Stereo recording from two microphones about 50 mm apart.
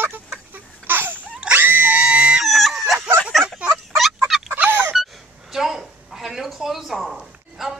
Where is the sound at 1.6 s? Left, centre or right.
Right.